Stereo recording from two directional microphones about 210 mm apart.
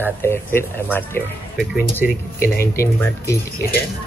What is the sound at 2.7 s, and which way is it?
Speech, 15° left (ahead or behind).